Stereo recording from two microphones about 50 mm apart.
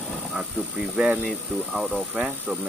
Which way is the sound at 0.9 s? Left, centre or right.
Centre.